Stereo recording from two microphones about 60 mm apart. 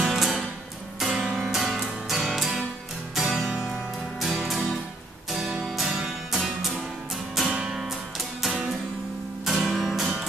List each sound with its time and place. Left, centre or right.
0.0 s music: centre